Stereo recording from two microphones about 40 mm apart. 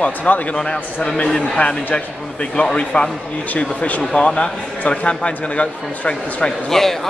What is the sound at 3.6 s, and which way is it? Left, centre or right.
Speech, left.